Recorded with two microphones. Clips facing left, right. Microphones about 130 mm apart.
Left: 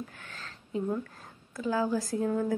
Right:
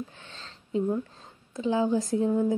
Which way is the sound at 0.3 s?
25° right (ahead or behind).